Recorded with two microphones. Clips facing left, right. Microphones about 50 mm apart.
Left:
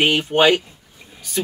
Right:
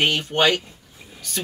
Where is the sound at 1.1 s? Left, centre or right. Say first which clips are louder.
Right 1 dB; centre.